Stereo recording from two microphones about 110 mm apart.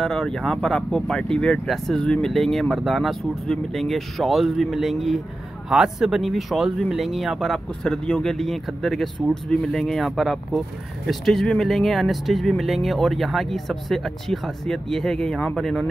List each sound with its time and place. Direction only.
0.0 s speech: 5° left (ahead or behind)